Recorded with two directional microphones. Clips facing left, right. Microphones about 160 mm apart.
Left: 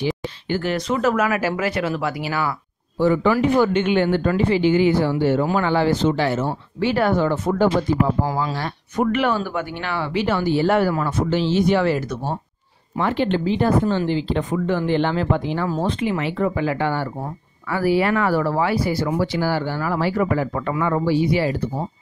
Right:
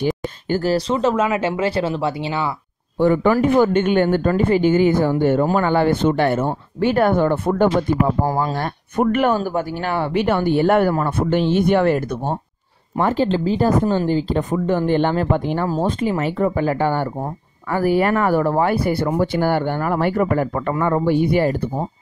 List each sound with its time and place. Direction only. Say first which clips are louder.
0.0 s speech: right 3 dB; 40° right (ahead or behind); by 2.5 s 25° right (ahead or behind)
3.0 s speech: right 2 dB; 50° right (ahead or behind)
12.9 s speech: right 2 dB; 45° right (ahead or behind)